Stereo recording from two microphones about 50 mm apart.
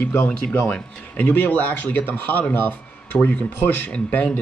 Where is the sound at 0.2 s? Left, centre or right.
Left.